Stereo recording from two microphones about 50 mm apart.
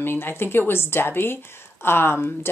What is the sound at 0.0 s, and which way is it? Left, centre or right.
A woman's voice, left.